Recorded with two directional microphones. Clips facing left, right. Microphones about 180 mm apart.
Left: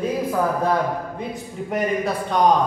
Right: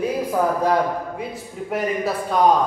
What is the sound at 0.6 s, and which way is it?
Speech, 15° right (ahead or behind).